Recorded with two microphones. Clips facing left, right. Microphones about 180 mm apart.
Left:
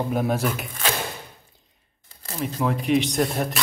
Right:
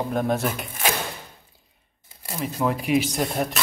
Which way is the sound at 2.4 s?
Centre (ahead or behind).